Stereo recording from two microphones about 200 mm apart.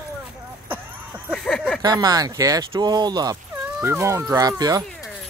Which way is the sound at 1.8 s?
20° right (ahead or behind).